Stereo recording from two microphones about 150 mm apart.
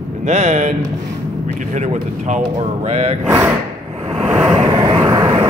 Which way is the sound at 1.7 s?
55° right (ahead or behind).